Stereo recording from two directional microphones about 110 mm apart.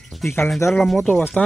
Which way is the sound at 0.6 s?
25° left (ahead or behind).